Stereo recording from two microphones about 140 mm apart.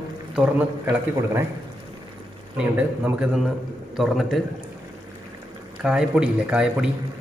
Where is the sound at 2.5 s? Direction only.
10° right (ahead or behind).